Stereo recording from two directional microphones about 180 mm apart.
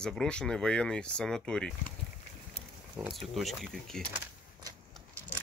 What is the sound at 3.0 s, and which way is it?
Speech, centre (ahead or behind).